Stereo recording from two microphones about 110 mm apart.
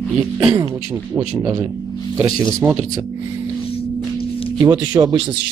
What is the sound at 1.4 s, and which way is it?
Speech, 40° right (ahead or behind).